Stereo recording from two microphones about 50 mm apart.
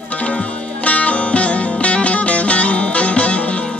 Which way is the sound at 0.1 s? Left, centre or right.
Left.